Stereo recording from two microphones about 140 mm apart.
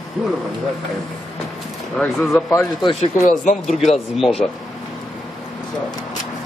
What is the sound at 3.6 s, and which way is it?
Speech, centre (ahead or behind).